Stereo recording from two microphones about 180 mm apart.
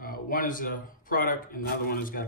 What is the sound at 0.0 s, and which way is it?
A man's voice, 50° left (ahead or behind).